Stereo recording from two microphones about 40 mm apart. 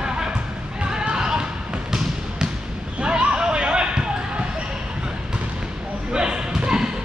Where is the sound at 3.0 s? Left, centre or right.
Right.